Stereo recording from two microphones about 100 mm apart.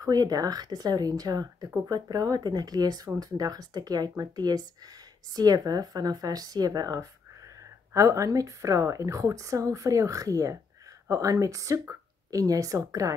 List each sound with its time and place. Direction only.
0.0 s a woman's voice: 40° right (ahead or behind)